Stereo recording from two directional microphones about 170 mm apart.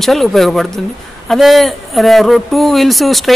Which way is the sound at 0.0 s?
Centre (ahead or behind).